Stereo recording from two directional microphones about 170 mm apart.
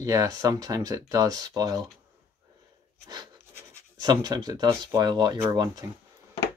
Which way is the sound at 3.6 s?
25° right (ahead or behind).